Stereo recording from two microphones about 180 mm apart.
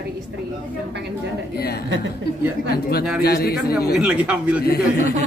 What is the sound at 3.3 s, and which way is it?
Speech, 60° left (ahead or behind).